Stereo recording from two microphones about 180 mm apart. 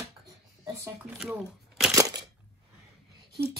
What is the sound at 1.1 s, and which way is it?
Speech, 5° right (ahead or behind).